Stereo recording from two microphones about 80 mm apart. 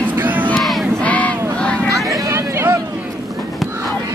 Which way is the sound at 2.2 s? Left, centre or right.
Right.